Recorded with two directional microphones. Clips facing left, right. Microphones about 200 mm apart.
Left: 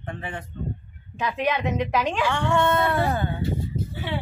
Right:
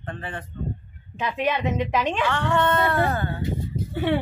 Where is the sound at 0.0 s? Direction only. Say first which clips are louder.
Even; 10° left (ahead or behind).